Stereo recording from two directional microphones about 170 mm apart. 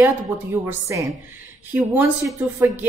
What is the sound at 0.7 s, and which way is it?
Speech, 15° right (ahead or behind).